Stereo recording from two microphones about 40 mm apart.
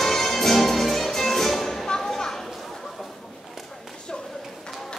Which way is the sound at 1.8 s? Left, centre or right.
Centre.